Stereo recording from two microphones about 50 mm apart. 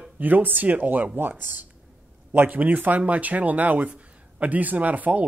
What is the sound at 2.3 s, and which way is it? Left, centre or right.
Speech, right.